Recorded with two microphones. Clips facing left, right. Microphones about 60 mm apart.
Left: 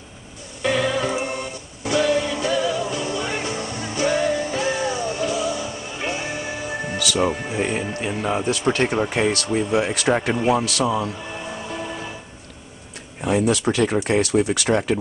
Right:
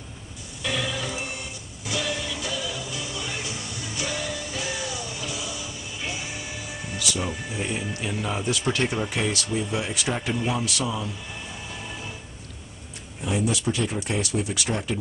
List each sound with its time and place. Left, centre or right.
0.6 s music: left
7.1 s speech: left
8.0 s speech: left
9.3 s speech: left
13.2 s speech: left
14.0 s speech: left